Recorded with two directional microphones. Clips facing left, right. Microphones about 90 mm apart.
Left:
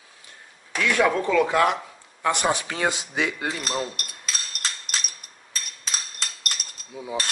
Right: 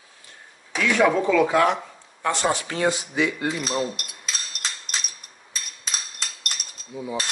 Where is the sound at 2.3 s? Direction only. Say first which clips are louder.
Right 1 dB; 15° left (ahead or behind).